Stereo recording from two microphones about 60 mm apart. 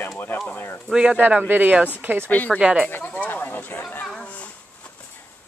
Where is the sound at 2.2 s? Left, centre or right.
Left.